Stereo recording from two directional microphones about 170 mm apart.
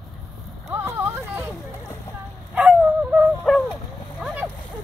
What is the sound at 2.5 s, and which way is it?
Honk, 10° right (ahead or behind).